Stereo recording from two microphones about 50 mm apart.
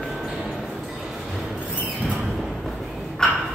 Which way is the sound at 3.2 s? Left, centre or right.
Centre.